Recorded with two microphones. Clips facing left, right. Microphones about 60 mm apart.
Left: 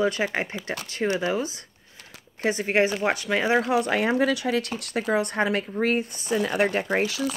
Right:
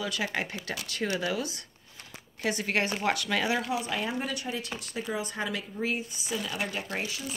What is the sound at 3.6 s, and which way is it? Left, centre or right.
Speech, left.